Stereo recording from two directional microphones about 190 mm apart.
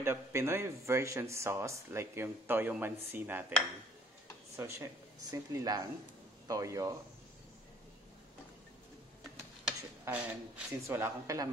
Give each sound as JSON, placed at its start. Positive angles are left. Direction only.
{"t": 0.0, "sound": "a man's voice", "side_deg": -15}
{"t": 4.6, "sound": "a man's voice", "side_deg": -10}
{"t": 9.7, "sound": "a sound", "side_deg": -10}
{"t": 10.9, "sound": "a man's voice", "side_deg": -15}